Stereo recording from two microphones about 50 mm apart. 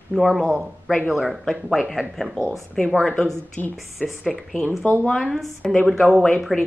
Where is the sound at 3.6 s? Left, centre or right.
Left.